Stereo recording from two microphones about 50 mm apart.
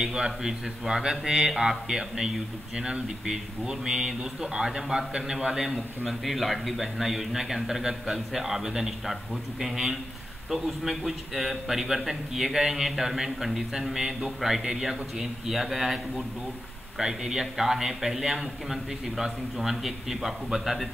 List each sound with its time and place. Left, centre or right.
0.0 s a man's voice: centre